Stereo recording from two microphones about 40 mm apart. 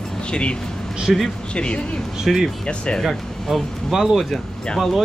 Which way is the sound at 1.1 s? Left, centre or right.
Centre.